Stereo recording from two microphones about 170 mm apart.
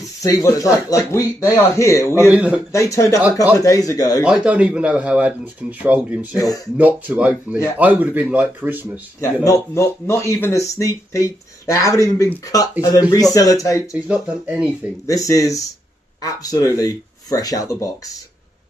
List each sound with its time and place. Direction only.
0.2 s speech: 20° left (ahead or behind)
2.3 s speech: 10° right (ahead or behind)
2.7 s speech: 20° left (ahead or behind)
4.2 s speech: 5° right (ahead or behind)
6.3 s speech: 20° left (ahead or behind)
6.8 s speech: 10° right (ahead or behind)
9.2 s speech: 20° left (ahead or behind)
13.9 s speech: 5° right (ahead or behind)
15.0 s speech: 20° left (ahead or behind)